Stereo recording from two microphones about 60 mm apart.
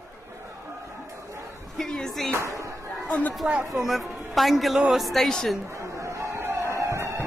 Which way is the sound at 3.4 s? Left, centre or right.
Centre.